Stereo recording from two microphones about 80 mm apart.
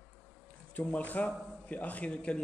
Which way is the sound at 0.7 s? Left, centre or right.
Centre.